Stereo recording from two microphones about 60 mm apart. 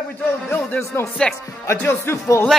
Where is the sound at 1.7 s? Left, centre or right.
Left.